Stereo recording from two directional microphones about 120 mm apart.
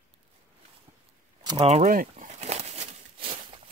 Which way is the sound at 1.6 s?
75° right (ahead or behind).